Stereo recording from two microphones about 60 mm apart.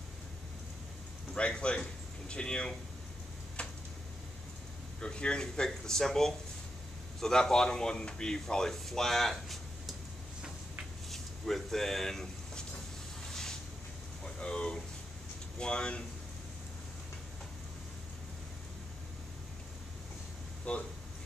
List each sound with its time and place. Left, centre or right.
1.3 s speech: centre
3.6 s a sound: centre
5.0 s speech: centre
11.1 s a sound: centre
15.6 s speech: centre
20.7 s speech: left